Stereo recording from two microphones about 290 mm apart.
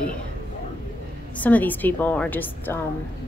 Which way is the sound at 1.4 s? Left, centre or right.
Centre.